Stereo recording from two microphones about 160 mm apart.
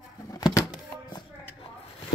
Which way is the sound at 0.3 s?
20° left (ahead or behind).